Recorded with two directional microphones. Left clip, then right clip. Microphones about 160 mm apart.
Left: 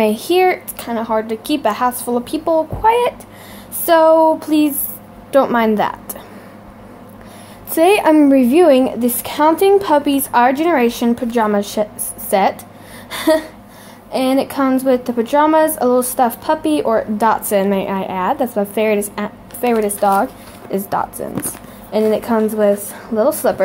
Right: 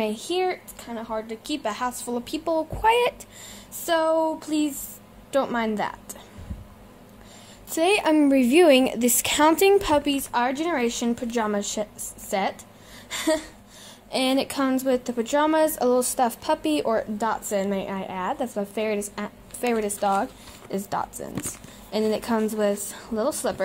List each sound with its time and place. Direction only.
0.0 s speech: 5° left (ahead or behind)
2.8 s a woman's voice: 25° right (ahead or behind)
3.8 s a woman's voice: centre (ahead or behind)
7.7 s a woman's voice: centre (ahead or behind)
8.4 s a woman's voice: 25° right (ahead or behind)
10.0 s a woman's voice: centre (ahead or behind)
14.1 s a woman's voice: 20° right (ahead or behind)
17.2 s a woman's voice: centre (ahead or behind); by 22.8 s 25° right (ahead or behind)
22.8 s a woman's voice: 10° right (ahead or behind)